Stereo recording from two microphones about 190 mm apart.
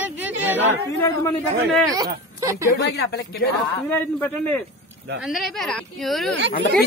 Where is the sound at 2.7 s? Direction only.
55° left (ahead or behind).